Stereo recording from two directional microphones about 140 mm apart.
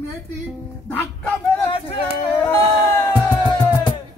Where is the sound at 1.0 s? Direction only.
20° left (ahead or behind).